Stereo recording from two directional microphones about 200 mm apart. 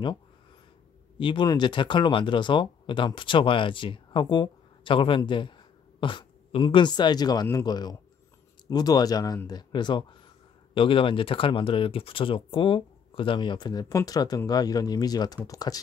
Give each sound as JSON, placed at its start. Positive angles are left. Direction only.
{"t": 1.2, "sound": "speech", "side_deg": 20}